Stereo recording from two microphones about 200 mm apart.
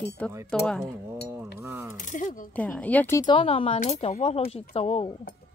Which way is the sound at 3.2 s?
25° left (ahead or behind).